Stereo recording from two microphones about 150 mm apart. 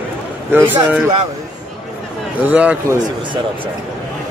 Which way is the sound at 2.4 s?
10° right (ahead or behind).